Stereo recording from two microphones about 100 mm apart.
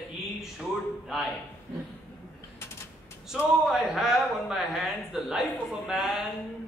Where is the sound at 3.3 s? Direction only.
5° right (ahead or behind).